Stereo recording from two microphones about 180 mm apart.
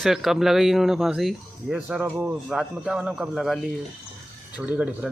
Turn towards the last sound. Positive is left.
turn(degrees=-5)  # may be behind; listen again after turning